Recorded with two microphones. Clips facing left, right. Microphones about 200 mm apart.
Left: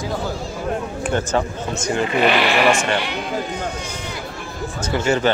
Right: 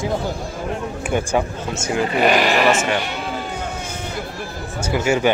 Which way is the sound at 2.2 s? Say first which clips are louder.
Right 2 dB; 45° right (ahead or behind).